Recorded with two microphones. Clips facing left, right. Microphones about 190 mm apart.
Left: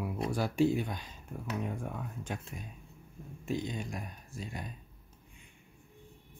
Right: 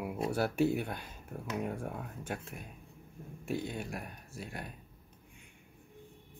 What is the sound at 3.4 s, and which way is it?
Speech, 60° right (ahead or behind).